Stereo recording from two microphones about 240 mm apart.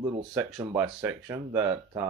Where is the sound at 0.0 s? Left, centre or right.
Centre.